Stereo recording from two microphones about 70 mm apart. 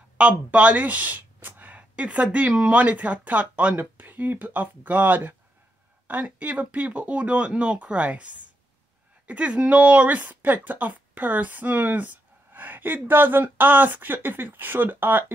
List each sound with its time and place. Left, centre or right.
0.2 s a woman's voice: centre